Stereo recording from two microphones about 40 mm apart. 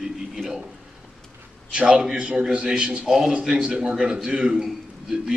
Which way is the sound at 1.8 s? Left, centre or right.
Right.